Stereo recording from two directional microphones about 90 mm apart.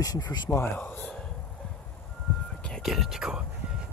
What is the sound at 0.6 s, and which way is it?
Speech, 20° left (ahead or behind).